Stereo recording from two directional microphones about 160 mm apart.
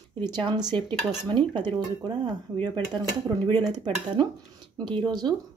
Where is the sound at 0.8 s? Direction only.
30° right (ahead or behind).